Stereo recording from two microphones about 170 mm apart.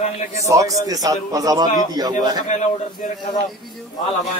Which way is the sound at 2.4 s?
45° left (ahead or behind).